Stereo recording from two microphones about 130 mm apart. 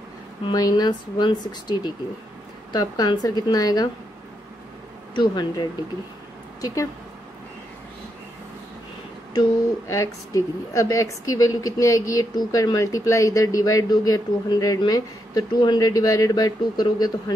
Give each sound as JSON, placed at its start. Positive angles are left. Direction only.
{"t": 0.5, "sound": "speech", "side_deg": 30}
{"t": 5.1, "sound": "a woman's voice", "side_deg": 35}
{"t": 9.3, "sound": "a woman's voice", "side_deg": 25}